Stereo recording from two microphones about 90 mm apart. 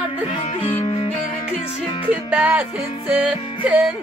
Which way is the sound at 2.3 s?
15° right (ahead or behind).